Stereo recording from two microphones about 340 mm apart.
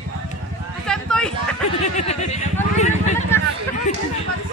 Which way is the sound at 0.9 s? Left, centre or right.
Centre.